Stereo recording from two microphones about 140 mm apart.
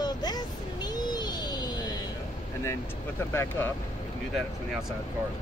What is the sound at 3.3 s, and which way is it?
Speech, 15° left (ahead or behind).